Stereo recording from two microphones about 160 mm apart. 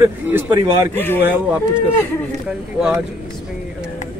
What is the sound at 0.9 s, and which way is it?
Speech, 15° left (ahead or behind).